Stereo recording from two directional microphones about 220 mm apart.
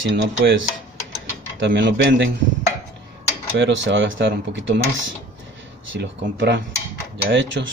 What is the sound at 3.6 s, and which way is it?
Speech, 55° right (ahead or behind).